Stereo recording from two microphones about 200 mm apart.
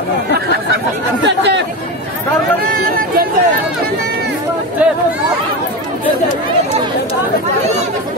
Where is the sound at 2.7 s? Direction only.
45° right (ahead or behind).